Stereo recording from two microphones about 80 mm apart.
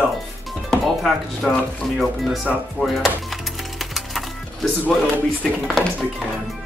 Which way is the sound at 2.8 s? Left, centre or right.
Centre.